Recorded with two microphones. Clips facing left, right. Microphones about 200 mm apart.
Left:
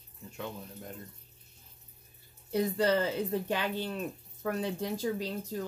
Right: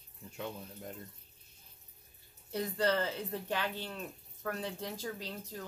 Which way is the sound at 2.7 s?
10° left (ahead or behind).